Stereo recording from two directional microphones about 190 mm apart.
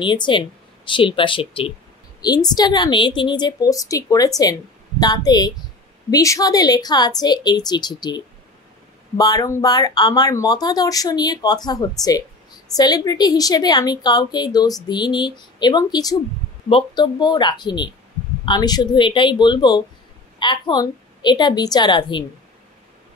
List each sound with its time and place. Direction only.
0.0 s a woman's voice: 25° left (ahead or behind)